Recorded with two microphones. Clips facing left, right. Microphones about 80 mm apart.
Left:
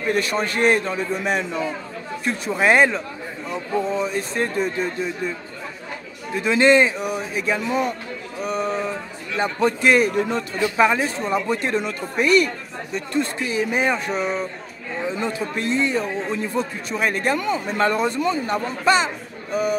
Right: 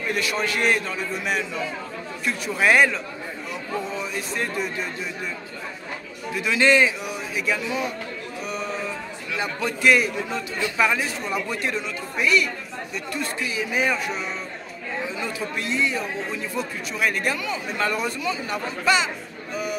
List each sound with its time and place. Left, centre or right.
0.1 s speech: left
6.3 s speech: left
8.4 s a sound: left
9.4 s speech: left
10.6 s speech: left
11.8 s speech: left
12.9 s speech: left
17.9 s speech: left
18.2 s speech: left